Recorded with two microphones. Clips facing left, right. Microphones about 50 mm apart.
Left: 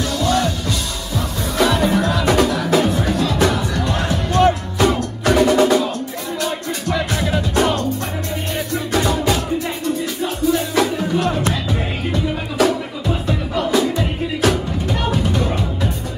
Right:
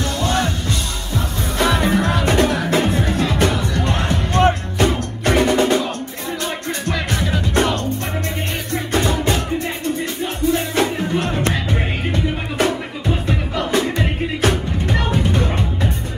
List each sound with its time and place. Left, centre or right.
0.2 s music: right